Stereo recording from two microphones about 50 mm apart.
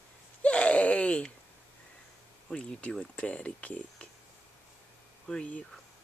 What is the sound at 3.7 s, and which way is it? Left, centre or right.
Speech, left.